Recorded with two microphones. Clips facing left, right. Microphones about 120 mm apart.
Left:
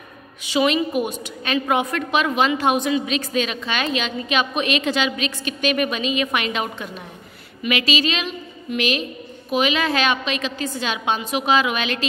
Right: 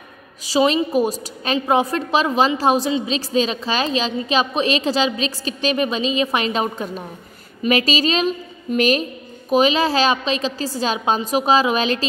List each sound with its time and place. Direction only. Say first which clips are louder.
0.5 s a woman's voice: right 2 dB; 30° right (ahead or behind)